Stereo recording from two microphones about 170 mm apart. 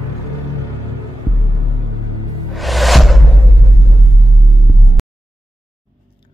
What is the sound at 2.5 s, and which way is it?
Music, centre (ahead or behind).